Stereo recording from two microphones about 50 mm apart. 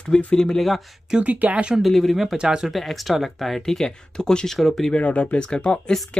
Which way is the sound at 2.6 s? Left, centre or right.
Centre.